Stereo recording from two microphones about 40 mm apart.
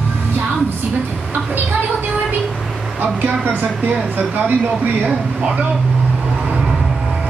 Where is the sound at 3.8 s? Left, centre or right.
Right.